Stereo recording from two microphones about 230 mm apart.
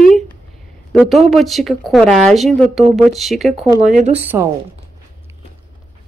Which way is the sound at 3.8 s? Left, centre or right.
Right.